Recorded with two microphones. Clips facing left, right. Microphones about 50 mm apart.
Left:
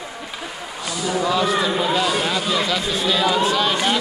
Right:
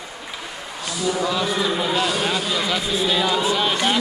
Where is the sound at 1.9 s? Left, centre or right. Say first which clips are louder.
Left 1 dB; centre.